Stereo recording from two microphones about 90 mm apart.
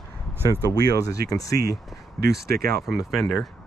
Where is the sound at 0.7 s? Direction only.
45° left (ahead or behind).